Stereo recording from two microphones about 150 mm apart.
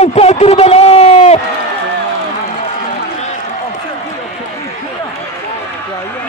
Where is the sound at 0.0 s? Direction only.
45° left (ahead or behind).